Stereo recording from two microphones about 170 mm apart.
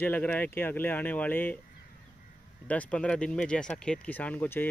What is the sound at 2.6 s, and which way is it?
Speech, 10° left (ahead or behind).